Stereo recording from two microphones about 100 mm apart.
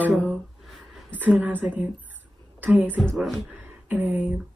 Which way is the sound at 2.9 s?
10° left (ahead or behind).